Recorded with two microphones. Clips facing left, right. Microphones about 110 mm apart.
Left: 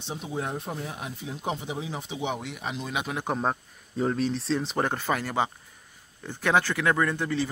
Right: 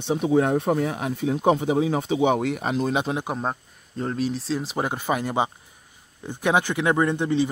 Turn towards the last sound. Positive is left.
turn(degrees=-20)  # may be behind; listen again after turning